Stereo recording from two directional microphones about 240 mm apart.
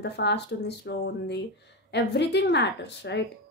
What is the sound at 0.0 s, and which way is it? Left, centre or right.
Speech, left.